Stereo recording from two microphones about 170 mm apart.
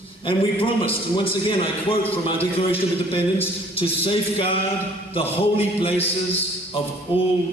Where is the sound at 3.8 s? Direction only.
35° left (ahead or behind).